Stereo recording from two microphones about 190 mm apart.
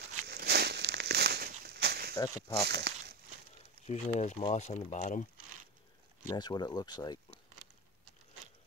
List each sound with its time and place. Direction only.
0.3 s a sound: 60° right (ahead or behind)
2.1 s speech: 20° left (ahead or behind)
2.6 s speech: 60° right (ahead or behind)
3.8 s speech: 35° left (ahead or behind)
6.2 s speech: 20° left (ahead or behind)